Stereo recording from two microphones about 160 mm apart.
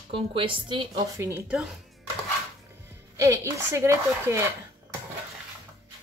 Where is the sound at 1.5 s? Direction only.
5° right (ahead or behind).